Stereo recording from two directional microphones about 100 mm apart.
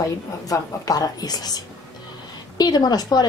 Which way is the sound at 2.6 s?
45° left (ahead or behind).